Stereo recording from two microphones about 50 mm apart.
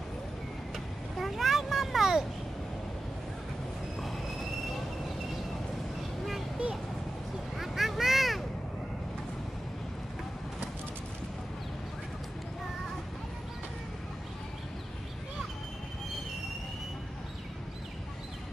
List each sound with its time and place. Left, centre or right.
1.1 s vehicle: centre
7.5 s vehicle: centre